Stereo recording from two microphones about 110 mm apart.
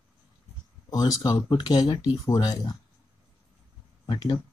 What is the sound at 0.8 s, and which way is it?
Speech, 35° left (ahead or behind).